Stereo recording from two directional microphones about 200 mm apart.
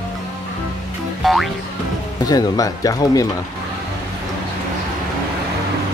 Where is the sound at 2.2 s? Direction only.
20° left (ahead or behind).